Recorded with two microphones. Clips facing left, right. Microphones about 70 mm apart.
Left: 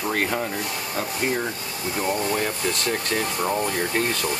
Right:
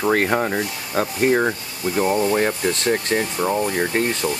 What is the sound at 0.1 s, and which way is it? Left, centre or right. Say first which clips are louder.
Speech: right 6 dB; right.